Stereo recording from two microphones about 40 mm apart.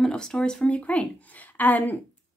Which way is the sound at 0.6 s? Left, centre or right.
Left.